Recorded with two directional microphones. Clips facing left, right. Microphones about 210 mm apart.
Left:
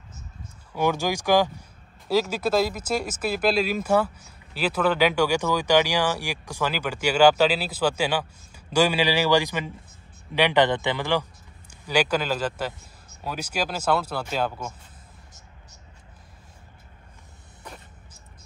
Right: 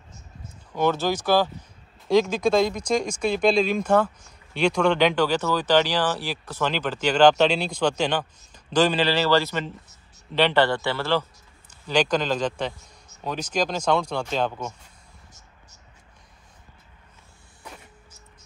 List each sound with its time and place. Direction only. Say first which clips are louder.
0.7 s speech: right 1 dB; 10° left (ahead or behind)